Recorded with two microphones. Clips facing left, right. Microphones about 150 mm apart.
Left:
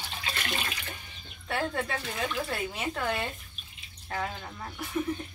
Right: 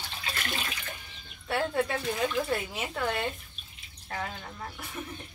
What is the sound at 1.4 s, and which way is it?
A woman's voice, 5° right (ahead or behind).